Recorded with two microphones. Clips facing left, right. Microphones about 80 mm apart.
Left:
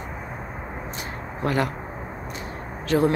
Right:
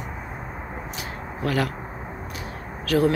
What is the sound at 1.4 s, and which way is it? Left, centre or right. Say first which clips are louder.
Speech: left 1 dB; left.